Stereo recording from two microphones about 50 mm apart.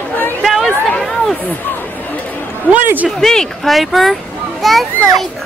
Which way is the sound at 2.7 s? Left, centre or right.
Right.